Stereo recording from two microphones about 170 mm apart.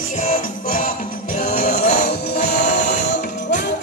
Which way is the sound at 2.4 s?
90° left.